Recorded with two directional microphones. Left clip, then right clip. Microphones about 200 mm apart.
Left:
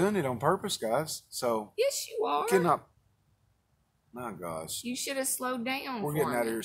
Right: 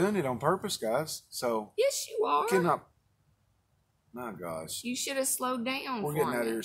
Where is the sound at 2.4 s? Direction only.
15° left (ahead or behind).